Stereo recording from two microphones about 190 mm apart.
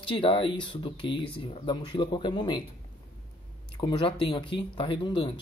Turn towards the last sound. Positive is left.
turn(degrees=25)  # may be behind; listen again after turning